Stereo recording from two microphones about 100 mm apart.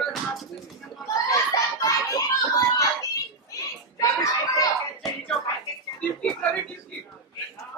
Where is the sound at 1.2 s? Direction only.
35° left (ahead or behind).